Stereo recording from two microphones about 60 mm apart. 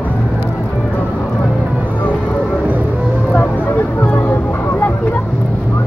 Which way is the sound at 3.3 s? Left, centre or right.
Left.